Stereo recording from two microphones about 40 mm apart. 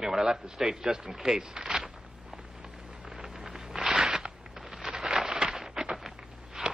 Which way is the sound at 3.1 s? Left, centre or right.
Centre.